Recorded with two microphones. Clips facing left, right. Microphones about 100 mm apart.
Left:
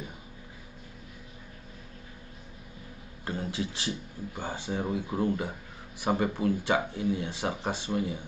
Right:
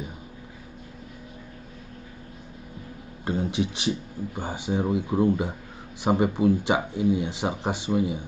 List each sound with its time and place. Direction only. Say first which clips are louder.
3.3 s speech: right 7 dB; 20° right (ahead or behind)